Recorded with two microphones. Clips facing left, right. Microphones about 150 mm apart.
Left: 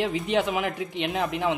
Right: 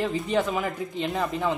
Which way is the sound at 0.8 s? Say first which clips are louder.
Even; 85° left.